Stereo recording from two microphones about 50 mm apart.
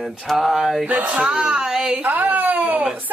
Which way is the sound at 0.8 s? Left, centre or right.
Right.